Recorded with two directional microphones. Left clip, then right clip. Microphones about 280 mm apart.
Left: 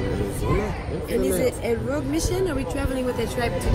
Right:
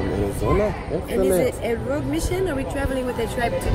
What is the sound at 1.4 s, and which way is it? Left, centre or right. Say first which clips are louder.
Speech: right 1 dB; centre.